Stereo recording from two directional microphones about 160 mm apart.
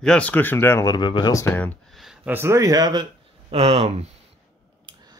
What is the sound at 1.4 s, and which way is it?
Speech, 10° left (ahead or behind).